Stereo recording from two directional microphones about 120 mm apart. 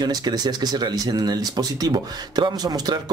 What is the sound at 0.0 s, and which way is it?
Speech, 35° right (ahead or behind).